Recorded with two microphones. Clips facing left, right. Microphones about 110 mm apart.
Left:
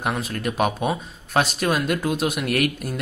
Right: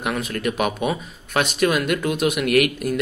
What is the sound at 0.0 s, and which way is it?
Speech, 30° left (ahead or behind).